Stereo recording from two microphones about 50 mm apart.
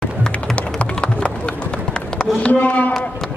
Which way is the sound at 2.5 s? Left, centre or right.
Left.